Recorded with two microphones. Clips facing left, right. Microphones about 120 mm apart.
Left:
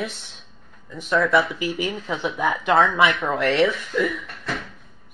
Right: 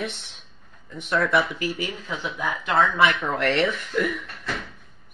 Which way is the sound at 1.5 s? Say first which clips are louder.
Left 3 dB; 20° left (ahead or behind).